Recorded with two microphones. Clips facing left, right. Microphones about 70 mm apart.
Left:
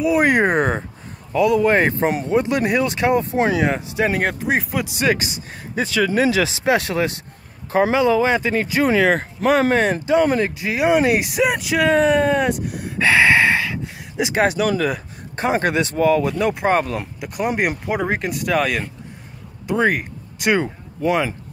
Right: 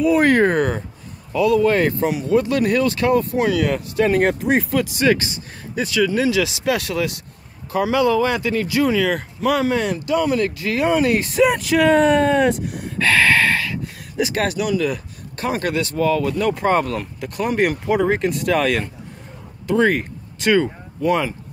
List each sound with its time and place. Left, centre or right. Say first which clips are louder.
0.0 s speech: right 1 dB; centre; by 2.3 s left
2.3 s speech: right 3 dB; left
4.2 s speech: right 3 dB; centre
4.9 s speech: even; centre; by 9.9 s left
10.4 s speech: even; centre
13.0 s speech: left 2 dB; centre
14.7 s speech: even; left
15.3 s speech: left 3 dB; left